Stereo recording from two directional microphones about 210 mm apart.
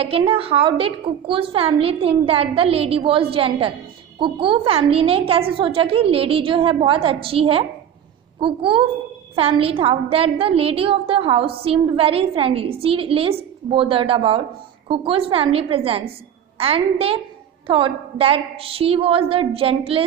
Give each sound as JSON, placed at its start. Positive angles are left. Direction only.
{"t": 0.0, "sound": "a woman's voice", "side_deg": -25}